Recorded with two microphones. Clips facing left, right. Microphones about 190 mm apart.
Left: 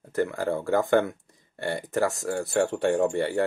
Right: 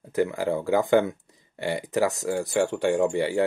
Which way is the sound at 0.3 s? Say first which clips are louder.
Right 1 dB; 15° right (ahead or behind).